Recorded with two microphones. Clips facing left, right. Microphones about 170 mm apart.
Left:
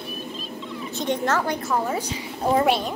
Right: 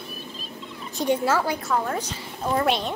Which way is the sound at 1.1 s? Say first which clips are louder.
Right 1 dB; 10° right (ahead or behind).